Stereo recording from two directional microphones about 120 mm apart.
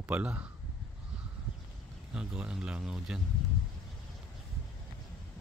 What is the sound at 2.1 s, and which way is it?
Speech, 5° right (ahead or behind).